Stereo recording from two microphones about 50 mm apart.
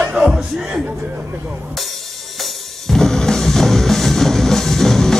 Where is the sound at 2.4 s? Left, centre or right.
Centre.